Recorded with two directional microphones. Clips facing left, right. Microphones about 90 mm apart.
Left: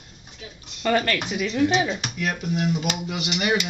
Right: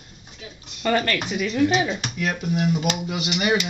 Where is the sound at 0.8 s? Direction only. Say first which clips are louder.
Even; 5° left (ahead or behind).